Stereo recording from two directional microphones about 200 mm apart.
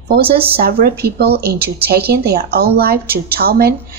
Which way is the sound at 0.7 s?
50° right (ahead or behind).